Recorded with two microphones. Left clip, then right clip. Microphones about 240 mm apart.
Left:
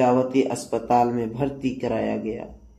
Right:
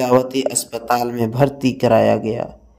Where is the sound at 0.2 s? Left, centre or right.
Right.